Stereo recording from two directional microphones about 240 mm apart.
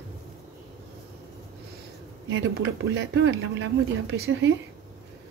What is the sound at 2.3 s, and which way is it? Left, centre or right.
Speech, right.